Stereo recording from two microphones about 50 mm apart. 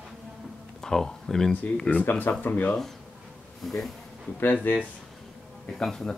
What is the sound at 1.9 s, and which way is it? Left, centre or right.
Speech, left.